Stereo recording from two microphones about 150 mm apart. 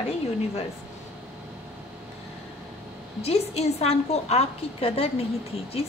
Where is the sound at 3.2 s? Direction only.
45° left (ahead or behind).